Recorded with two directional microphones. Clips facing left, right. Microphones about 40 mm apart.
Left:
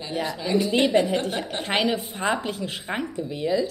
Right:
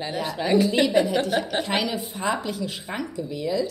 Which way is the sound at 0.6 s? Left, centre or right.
Left.